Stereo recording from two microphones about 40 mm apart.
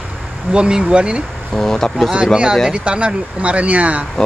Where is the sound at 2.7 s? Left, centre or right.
Right.